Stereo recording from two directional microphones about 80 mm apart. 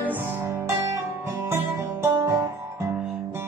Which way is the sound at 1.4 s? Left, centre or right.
Right.